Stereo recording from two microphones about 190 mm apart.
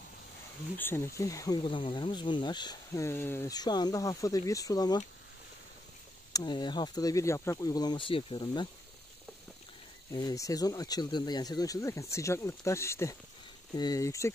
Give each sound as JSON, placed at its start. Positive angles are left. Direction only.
{"t": 0.7, "sound": "speech", "side_deg": 10}
{"t": 6.3, "sound": "speech", "side_deg": 25}
{"t": 10.1, "sound": "speech", "side_deg": 20}